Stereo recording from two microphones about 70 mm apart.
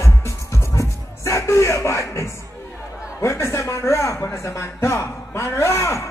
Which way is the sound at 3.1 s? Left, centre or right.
Left.